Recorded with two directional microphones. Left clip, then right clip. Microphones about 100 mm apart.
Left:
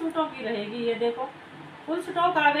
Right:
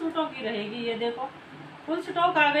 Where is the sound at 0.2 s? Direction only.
5° right (ahead or behind).